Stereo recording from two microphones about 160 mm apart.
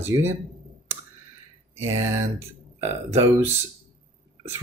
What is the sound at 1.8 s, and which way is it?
Speech, 15° right (ahead or behind).